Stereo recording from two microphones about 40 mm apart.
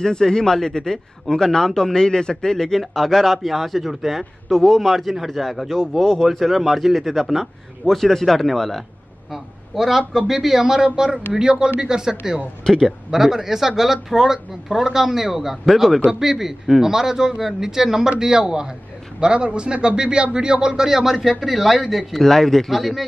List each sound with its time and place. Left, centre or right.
0.0 s a man's voice: centre
6.2 s a man's voice: centre